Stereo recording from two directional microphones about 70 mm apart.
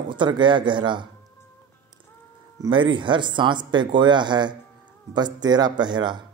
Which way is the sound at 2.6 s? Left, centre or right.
Right.